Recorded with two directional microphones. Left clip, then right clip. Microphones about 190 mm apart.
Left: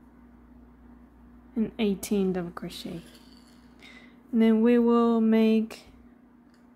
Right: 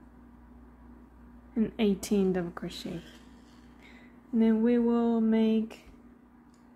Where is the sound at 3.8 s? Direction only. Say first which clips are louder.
Left 6 dB; 20° left (ahead or behind).